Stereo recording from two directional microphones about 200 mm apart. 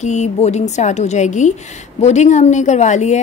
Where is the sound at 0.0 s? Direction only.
35° left (ahead or behind).